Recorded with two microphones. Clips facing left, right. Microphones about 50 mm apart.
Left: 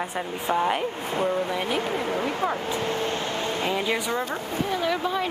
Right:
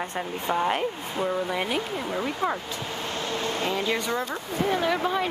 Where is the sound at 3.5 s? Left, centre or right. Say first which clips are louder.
Left 1 dB; centre.